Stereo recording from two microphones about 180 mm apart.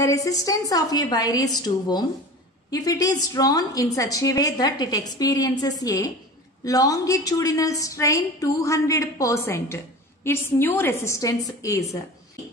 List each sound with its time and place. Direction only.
0.0 s a woman's voice: 20° left (ahead or behind)